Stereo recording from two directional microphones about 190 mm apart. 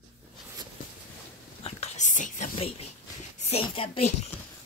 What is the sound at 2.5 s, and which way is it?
A woman's voice, 30° left (ahead or behind).